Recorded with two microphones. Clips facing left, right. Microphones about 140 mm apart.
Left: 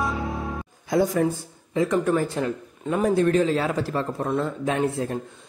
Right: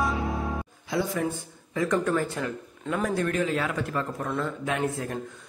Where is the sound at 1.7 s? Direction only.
25° left (ahead or behind).